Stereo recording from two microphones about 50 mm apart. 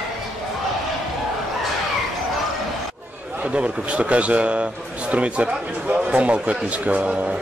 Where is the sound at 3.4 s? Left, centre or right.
Right.